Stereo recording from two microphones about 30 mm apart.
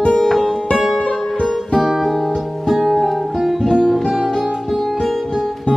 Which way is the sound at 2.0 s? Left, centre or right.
Centre.